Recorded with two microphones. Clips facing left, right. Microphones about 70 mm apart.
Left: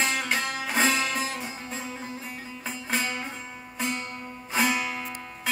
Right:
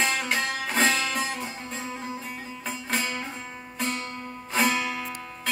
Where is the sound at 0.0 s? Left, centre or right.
Centre.